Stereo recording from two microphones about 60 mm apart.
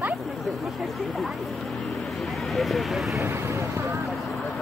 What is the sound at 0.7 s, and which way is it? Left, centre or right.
Speech, centre.